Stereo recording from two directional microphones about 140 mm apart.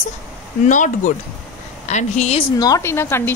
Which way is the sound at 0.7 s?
65° left (ahead or behind).